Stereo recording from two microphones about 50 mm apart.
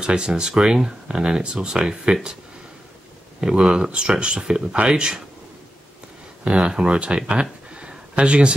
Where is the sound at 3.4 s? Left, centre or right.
Centre.